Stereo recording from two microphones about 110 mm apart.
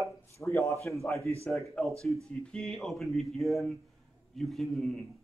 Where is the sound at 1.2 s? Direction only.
25° right (ahead or behind).